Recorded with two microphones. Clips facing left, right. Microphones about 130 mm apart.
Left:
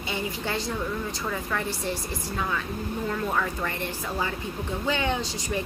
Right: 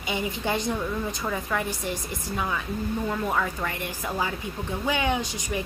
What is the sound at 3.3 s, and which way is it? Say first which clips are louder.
A woman's voice: right 1 dB; 5° right (ahead or behind).